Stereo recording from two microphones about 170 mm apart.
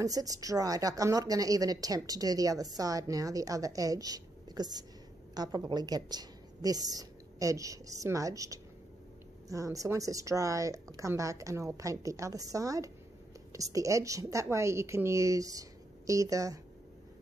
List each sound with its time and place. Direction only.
0.0 s a woman's voice: 20° right (ahead or behind)